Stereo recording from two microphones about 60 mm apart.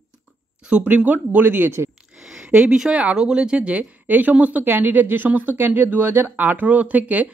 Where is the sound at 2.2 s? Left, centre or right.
Centre.